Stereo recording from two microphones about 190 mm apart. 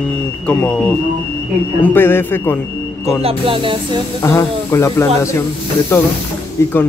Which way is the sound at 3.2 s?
30° right (ahead or behind).